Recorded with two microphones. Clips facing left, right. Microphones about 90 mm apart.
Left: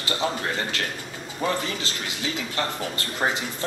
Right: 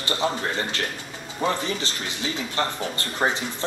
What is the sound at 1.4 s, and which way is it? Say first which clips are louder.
Speech: right 1 dB; 20° right (ahead or behind).